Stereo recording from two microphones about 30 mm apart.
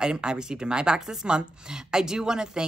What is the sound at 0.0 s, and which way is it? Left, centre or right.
Speech, right.